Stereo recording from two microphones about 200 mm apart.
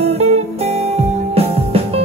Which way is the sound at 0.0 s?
30° right (ahead or behind).